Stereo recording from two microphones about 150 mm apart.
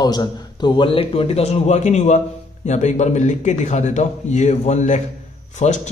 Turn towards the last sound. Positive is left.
turn(degrees=50)  # may be behind; listen again after turning